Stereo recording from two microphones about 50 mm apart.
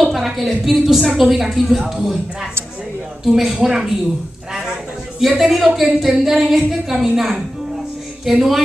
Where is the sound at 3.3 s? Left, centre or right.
Centre.